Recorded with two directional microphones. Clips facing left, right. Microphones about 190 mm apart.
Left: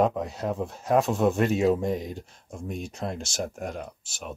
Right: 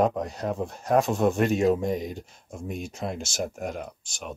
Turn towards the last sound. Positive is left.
turn(degrees=5)  # may be behind; listen again after turning